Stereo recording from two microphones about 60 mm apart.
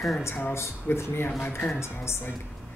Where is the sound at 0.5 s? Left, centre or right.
Left.